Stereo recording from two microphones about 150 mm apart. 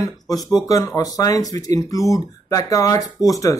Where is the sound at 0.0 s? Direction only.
25° left (ahead or behind).